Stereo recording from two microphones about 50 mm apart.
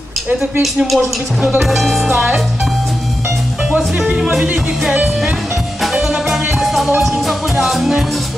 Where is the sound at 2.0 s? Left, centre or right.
Right.